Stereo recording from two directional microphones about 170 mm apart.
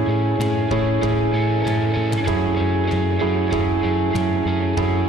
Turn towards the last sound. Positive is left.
turn(degrees=0)  # may be behind; listen again after turning